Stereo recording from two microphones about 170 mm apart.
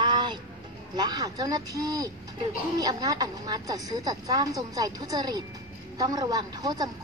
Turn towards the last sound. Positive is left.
turn(degrees=-25)  # may be behind; listen again after turning